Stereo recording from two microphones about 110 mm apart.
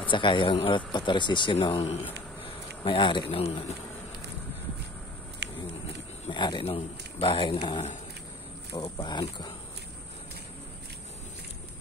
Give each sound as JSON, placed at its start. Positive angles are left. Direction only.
{"t": 0.1, "sound": "speech", "side_deg": 50}
{"t": 3.3, "sound": "speech", "side_deg": 60}
{"t": 6.3, "sound": "speech", "side_deg": 45}